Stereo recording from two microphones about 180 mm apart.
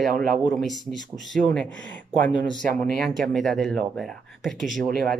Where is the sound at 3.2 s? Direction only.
Centre (ahead or behind).